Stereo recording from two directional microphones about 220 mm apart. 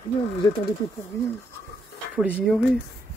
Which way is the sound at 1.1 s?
10° left (ahead or behind).